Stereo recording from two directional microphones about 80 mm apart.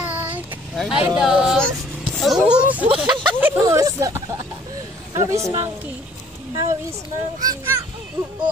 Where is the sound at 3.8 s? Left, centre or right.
Right.